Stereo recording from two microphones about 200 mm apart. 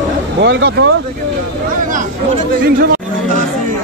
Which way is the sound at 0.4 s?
60° right (ahead or behind).